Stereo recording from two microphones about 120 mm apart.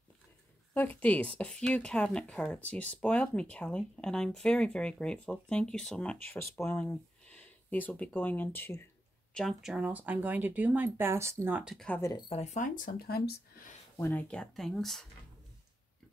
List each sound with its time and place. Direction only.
1.0 s speech: 10° left (ahead or behind)
9.3 s speech: 5° left (ahead or behind); by 11.7 s 15° right (ahead or behind)
11.7 s speech: 5° left (ahead or behind)
12.0 s speech: 35° left (ahead or behind)
12.3 s speech: 65° left (ahead or behind)
13.9 s speech: 20° left (ahead or behind)
14.2 s speech: 5° left (ahead or behind)